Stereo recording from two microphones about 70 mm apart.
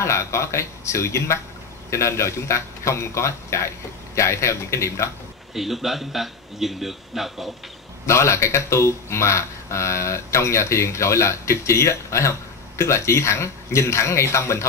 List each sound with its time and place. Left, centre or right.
0.0 s speech: left
5.5 s a man's voice: centre
8.1 s speech: left